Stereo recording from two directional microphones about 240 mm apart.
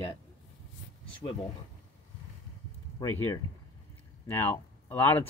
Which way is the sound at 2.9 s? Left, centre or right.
Centre.